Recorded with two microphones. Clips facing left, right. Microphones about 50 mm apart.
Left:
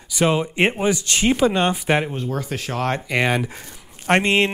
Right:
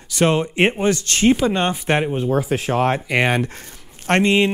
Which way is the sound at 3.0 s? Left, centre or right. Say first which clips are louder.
Right 2 dB; centre.